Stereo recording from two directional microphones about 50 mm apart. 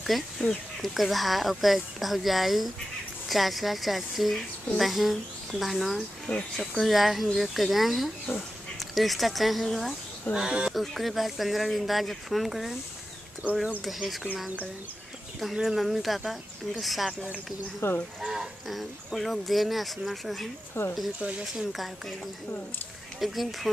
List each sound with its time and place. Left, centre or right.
0.4 s speech: centre
0.8 s speech: centre
6.3 s speech: left
6.8 s speech: centre
10.3 s speech: centre
10.7 s speech: centre
13.8 s speech: centre
15.6 s speech: centre
17.8 s speech: left
18.2 s speech: centre
20.8 s speech: left
21.2 s speech: right
21.5 s speech: centre
23.1 s speech: centre